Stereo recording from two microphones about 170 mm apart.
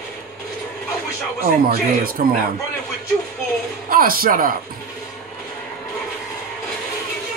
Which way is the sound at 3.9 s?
60° right (ahead or behind).